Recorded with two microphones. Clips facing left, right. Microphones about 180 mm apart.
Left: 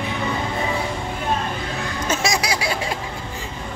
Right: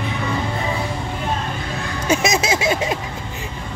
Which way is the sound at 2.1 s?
20° right (ahead or behind).